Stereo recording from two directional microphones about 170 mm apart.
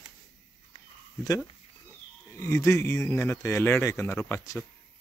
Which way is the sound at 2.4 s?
15° left (ahead or behind).